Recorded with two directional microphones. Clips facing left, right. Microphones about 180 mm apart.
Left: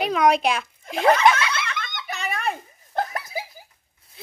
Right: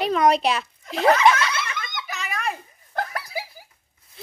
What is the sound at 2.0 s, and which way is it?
Children playing, 30° left (ahead or behind).